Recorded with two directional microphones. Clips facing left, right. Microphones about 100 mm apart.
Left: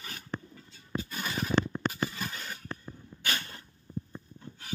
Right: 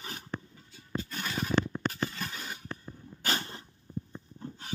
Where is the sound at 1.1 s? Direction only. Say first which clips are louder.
Left 1 dB; 5° left (ahead or behind).